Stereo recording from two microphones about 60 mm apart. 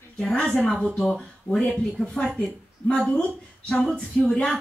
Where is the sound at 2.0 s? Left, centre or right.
Centre.